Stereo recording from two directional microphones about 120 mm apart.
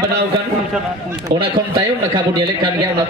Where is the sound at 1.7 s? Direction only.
40° right (ahead or behind).